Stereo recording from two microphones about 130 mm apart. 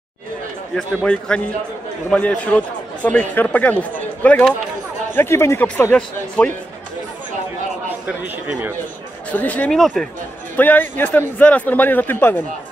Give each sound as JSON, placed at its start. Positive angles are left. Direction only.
{"t": 1.0, "sound": "a man's voice", "side_deg": 10}
{"t": 5.9, "sound": "a man's voice", "side_deg": 5}
{"t": 8.5, "sound": "speech", "side_deg": -10}
{"t": 9.3, "sound": "a man's voice", "side_deg": 10}
{"t": 9.8, "sound": "speech", "side_deg": 0}
{"t": 10.5, "sound": "a man's voice", "side_deg": 15}